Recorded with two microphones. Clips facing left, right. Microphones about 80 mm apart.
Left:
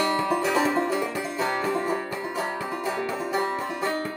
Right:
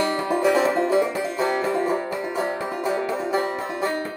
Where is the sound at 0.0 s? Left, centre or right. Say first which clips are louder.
Right 3 dB; right.